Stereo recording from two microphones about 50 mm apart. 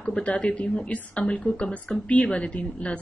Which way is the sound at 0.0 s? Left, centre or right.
Left.